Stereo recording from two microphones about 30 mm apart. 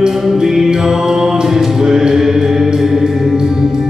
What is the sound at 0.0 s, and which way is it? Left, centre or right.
Music, centre.